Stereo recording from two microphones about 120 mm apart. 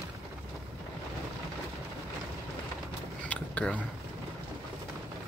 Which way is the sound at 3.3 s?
10° left (ahead or behind).